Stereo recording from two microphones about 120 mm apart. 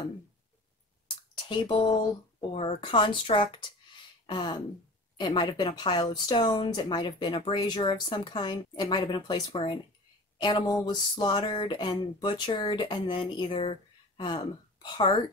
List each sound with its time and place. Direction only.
1.0 s a sound: 40° left (ahead or behind)
2.5 s speech: 60° left (ahead or behind)
2.8 s speech: 45° left (ahead or behind)
10.4 s speech: 35° left (ahead or behind)